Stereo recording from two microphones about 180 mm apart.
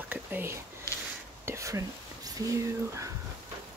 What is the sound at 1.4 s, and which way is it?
Whispering, 15° right (ahead or behind).